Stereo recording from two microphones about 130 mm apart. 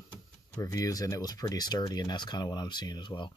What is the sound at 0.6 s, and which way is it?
Speech, 25° left (ahead or behind).